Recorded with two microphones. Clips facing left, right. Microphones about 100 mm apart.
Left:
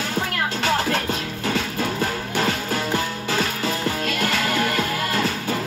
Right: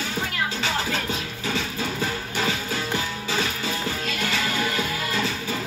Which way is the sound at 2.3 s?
55° left (ahead or behind).